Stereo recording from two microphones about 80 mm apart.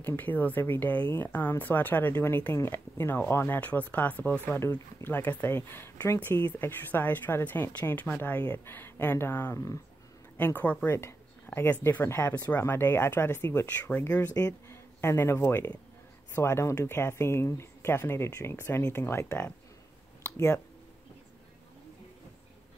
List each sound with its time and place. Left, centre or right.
0.0 s speech: left
3.6 s speech: left
11.0 s speech: left